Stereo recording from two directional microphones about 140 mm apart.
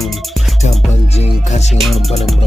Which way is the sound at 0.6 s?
50° left (ahead or behind).